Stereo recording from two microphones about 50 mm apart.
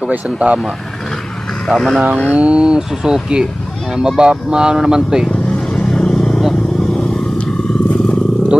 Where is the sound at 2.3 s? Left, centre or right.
Right.